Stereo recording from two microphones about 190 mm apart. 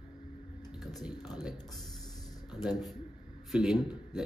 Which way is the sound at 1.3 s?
20° left (ahead or behind).